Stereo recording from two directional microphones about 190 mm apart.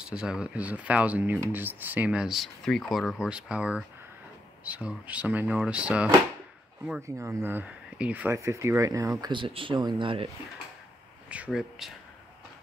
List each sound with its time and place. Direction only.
0.0 s speech: 5° right (ahead or behind); by 10.3 s 30° right (ahead or behind)
11.2 s speech: 5° right (ahead or behind)